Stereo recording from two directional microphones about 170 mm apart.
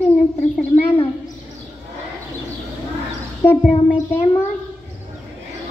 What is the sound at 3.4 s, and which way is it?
Speech, 30° left (ahead or behind).